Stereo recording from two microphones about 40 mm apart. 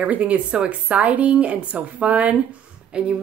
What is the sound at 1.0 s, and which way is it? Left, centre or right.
Speech, right.